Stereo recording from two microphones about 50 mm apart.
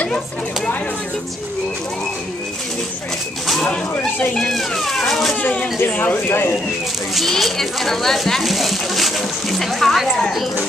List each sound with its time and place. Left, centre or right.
4.4 s speech: centre
5.8 s speech: left
7.2 s a child's voice: centre